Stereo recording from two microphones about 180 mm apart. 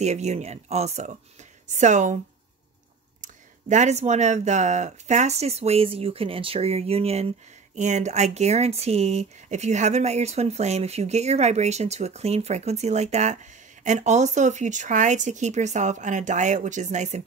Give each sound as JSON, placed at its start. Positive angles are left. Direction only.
{"t": 0.0, "sound": "speech", "side_deg": -40}
{"t": 3.2, "sound": "speech", "side_deg": -40}